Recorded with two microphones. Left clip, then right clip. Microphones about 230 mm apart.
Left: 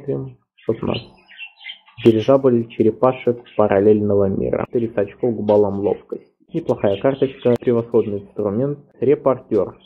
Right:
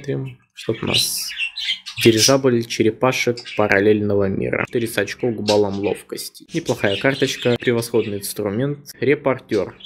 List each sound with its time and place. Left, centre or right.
0.0 s speech: right
2.1 s speech: right